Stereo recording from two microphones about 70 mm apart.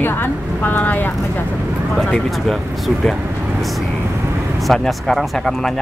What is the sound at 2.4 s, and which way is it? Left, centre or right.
Speech, centre.